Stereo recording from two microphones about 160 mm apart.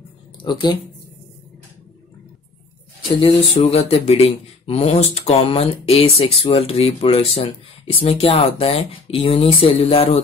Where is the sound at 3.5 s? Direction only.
40° left (ahead or behind).